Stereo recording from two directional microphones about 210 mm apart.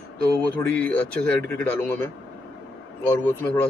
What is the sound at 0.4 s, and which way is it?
Speech, 5° left (ahead or behind).